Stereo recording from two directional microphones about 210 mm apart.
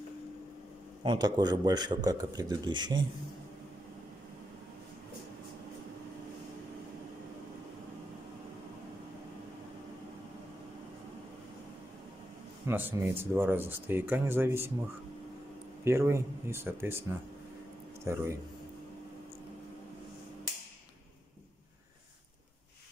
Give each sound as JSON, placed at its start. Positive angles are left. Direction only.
{"t": 1.0, "sound": "a man's voice", "side_deg": -20}
{"t": 12.6, "sound": "speech", "side_deg": -10}
{"t": 15.8, "sound": "speech", "side_deg": -10}
{"t": 18.0, "sound": "speech", "side_deg": -15}